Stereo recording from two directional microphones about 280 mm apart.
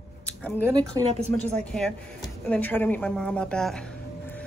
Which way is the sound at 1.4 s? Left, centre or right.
Centre.